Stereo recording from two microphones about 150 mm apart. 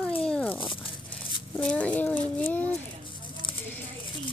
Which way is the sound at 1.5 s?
5° left (ahead or behind).